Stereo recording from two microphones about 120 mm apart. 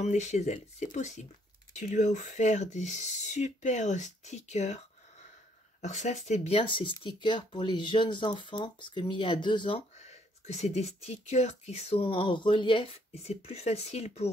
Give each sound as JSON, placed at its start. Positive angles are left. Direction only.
{"t": 0.0, "sound": "speech", "side_deg": 75}
{"t": 5.8, "sound": "speech", "side_deg": 80}
{"t": 9.9, "sound": "speech", "side_deg": 65}